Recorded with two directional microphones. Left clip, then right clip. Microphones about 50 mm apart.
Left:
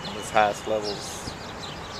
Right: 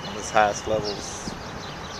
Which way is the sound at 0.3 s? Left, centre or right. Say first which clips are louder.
Right 1 dB; centre.